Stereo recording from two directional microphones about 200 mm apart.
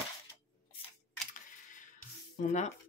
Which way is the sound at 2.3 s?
35° left (ahead or behind).